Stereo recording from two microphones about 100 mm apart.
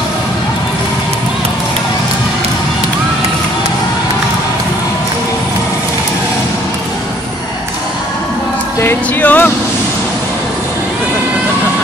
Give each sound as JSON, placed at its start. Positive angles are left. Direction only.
{"t": 8.8, "sound": "speech", "side_deg": 20}